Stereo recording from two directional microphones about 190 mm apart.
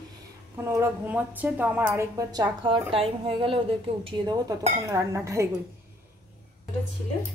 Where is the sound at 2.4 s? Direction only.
25° right (ahead or behind).